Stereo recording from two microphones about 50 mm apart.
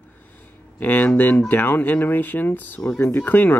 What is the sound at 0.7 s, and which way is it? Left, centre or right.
Speech, left.